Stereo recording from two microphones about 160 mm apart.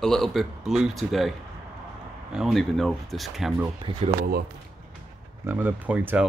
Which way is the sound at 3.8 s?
35° right (ahead or behind).